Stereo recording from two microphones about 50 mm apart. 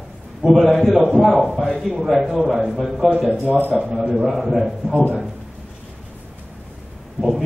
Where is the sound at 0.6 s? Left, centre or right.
Centre.